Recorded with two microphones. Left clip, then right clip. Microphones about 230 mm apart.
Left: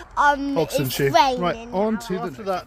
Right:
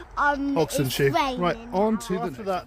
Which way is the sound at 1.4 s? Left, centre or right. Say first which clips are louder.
Left 1 dB; centre.